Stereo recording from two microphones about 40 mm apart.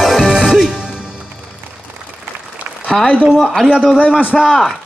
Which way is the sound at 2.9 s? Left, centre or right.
Centre.